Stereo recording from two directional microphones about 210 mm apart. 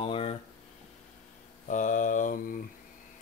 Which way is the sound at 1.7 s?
35° left (ahead or behind).